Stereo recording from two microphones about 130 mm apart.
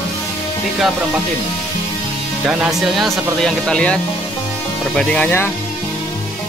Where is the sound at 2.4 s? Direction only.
10° right (ahead or behind); by 5.5 s 10° left (ahead or behind).